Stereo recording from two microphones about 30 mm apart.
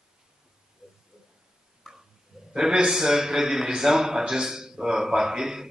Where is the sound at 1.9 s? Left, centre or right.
Centre.